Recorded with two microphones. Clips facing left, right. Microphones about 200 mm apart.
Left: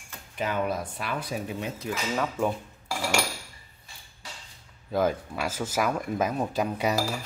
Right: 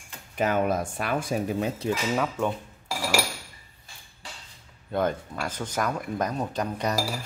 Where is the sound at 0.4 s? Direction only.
45° right (ahead or behind).